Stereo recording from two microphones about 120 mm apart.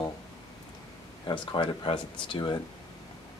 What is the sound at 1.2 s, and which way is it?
Speech, 45° left (ahead or behind).